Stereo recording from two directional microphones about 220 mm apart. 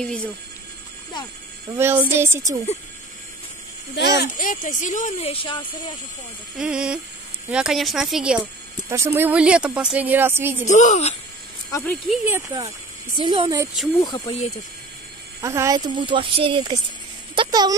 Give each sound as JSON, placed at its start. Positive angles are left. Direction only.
{"t": 0.0, "sound": "speech", "side_deg": 5}
{"t": 1.8, "sound": "music", "side_deg": -10}
{"t": 3.9, "sound": "speech", "side_deg": 50}
{"t": 6.6, "sound": "speech", "side_deg": -5}
{"t": 10.7, "sound": "speech", "side_deg": 35}
{"t": 11.7, "sound": "speech", "side_deg": 5}
{"t": 12.3, "sound": "music", "side_deg": -15}
{"t": 13.2, "sound": "a woman's voice", "side_deg": -20}
{"t": 14.0, "sound": "speech", "side_deg": 20}
{"t": 15.4, "sound": "a woman's voice", "side_deg": -15}